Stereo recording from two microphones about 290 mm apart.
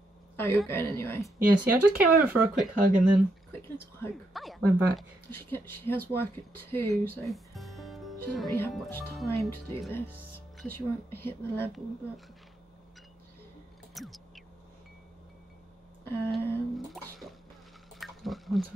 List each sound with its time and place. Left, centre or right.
0.4 s a woman's voice: centre
1.6 s speech: centre
2.8 s speech: right
3.2 s a woman's voice: centre
13.9 s a sound: centre
16.0 s speech: centre
17.9 s a sound: centre